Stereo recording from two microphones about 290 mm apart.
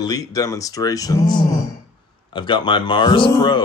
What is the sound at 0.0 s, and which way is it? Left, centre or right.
A man's voice, centre.